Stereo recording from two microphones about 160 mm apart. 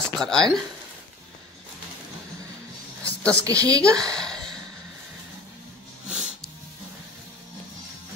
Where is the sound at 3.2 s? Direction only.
20° right (ahead or behind).